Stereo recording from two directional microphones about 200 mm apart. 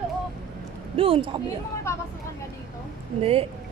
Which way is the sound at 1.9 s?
15° left (ahead or behind).